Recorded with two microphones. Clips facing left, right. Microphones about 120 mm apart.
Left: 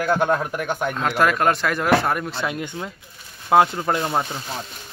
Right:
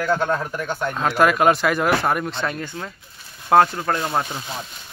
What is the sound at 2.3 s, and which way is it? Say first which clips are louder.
Speech: even; 10° left (ahead or behind).